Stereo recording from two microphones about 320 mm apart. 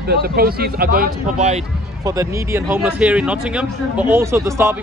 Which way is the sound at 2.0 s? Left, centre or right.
Centre.